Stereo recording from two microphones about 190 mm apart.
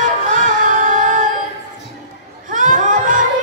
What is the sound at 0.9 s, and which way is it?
Music, 40° right (ahead or behind).